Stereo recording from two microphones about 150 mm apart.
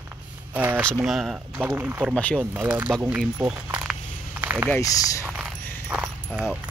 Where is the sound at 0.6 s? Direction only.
10° right (ahead or behind).